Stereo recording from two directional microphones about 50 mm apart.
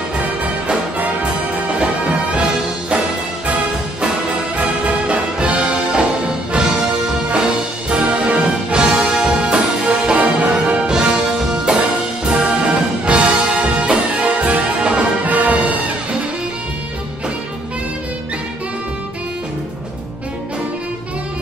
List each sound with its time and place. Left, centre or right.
0.2 s music: right
4.6 s music: right
7.9 s music: right
15.2 s music: right